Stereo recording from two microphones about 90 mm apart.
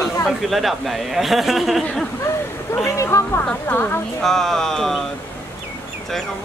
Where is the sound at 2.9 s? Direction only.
35° left (ahead or behind).